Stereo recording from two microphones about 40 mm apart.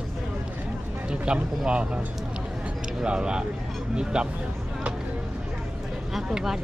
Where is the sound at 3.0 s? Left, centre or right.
Right.